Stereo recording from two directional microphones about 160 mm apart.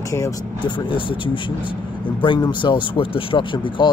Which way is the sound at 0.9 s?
30° left (ahead or behind).